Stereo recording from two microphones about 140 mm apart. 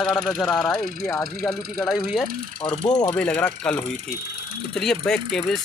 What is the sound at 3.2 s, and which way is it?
Speech, 10° left (ahead or behind).